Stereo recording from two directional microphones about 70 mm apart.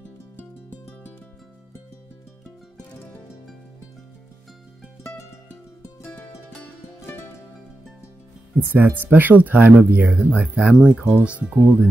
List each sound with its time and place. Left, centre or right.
5.8 s music: left
6.4 s music: centre
8.5 s speech: right